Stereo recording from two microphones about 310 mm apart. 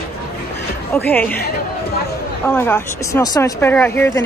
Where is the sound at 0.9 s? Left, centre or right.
Centre.